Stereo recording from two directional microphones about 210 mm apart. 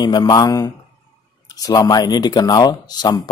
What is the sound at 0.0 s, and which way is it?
A man's voice, 20° left (ahead or behind).